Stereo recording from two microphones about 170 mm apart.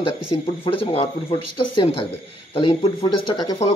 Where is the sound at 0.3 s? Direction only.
30° left (ahead or behind).